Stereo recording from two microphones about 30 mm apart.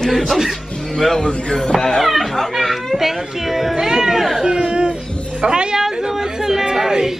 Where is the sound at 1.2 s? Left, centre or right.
Left.